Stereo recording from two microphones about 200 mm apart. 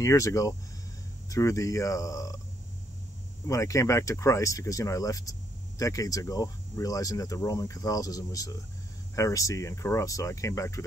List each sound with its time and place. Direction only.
0.0 s speech: 15° left (ahead or behind)
3.4 s speech: 15° left (ahead or behind)